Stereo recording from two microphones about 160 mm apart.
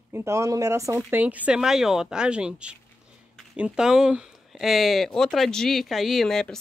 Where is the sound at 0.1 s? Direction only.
15° right (ahead or behind).